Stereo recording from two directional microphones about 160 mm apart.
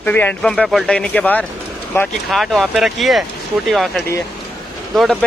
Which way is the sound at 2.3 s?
Centre (ahead or behind).